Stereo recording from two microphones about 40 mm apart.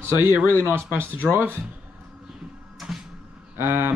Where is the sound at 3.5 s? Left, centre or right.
Right.